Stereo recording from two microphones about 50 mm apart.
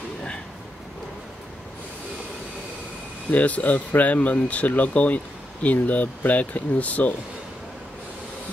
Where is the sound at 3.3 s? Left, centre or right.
Left.